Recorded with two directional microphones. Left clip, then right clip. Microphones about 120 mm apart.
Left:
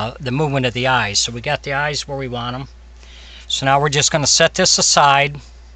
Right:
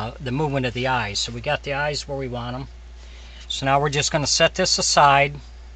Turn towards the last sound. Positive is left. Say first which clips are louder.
# left 3 dB
turn(degrees=40)  # may be behind; listen again after turning